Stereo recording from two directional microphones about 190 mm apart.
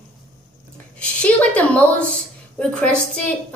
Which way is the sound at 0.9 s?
5° left (ahead or behind).